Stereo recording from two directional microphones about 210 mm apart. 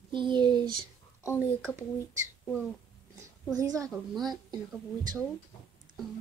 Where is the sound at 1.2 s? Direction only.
10° left (ahead or behind).